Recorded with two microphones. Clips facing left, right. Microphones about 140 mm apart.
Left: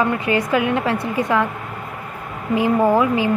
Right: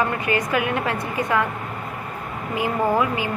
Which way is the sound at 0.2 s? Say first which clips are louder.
Left 4 dB; 25° left (ahead or behind).